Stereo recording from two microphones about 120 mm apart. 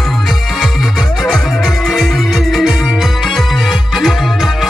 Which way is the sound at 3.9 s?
Centre (ahead or behind).